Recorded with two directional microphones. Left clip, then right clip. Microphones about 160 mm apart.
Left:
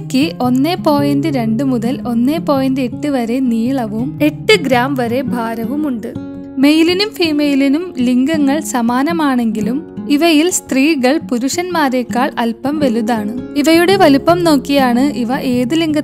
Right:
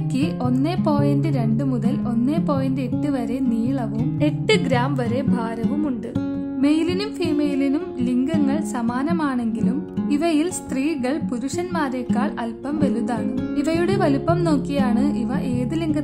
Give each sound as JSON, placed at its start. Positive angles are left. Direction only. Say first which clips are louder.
{"t": 0.1, "sound": "speech", "louder": "left 9 dB", "side_deg": 50}
{"t": 4.2, "sound": "speech", "louder": "left 9 dB", "side_deg": 35}
{"t": 6.6, "sound": "speech", "louder": "left 10 dB", "side_deg": 55}